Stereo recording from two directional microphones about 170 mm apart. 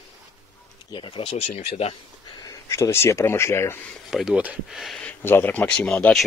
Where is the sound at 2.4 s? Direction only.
20° left (ahead or behind).